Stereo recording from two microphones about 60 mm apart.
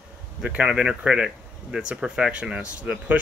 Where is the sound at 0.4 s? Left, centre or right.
Right.